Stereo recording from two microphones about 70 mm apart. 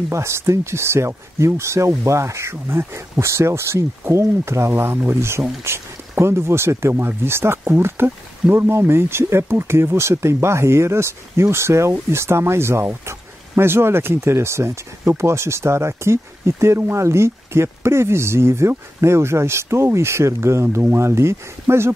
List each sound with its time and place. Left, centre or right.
0.1 s speech: right